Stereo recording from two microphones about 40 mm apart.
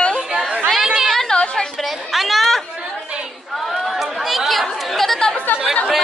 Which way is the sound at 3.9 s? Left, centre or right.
Centre.